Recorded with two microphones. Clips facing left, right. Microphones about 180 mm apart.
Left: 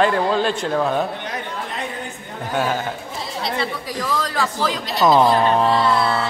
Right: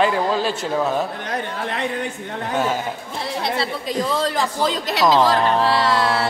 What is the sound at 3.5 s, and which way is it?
A man's voice, 30° right (ahead or behind).